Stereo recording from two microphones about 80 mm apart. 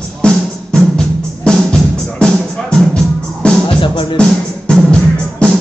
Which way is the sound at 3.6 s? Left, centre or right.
Left.